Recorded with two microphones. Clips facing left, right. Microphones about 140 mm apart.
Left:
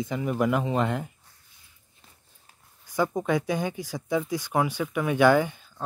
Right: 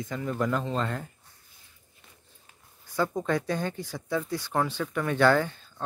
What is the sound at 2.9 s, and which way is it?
Speech, 15° left (ahead or behind).